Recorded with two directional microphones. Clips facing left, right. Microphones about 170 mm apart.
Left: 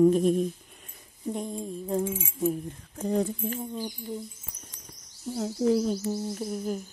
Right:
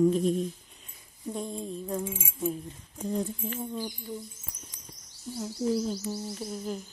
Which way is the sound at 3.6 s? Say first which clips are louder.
Left 1 dB; 15° left (ahead or behind).